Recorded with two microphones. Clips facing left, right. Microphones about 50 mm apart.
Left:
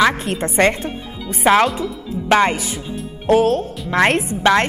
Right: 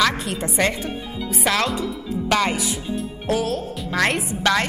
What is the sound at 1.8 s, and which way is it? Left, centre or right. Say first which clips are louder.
Speech: left 1 dB; left.